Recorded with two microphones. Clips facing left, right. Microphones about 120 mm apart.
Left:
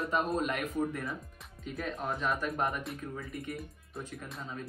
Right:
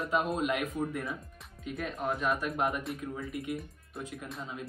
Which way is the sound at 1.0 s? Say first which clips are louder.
Right 1 dB; centre (ahead or behind).